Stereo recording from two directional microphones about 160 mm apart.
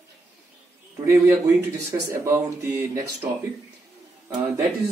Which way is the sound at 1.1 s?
20° right (ahead or behind).